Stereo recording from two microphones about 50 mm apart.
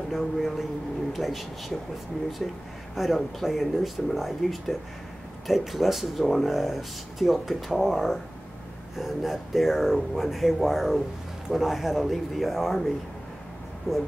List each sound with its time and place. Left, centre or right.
0.1 s speech: centre
3.0 s speech: centre
13.9 s speech: left